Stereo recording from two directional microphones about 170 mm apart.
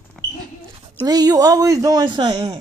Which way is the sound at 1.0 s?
20° right (ahead or behind).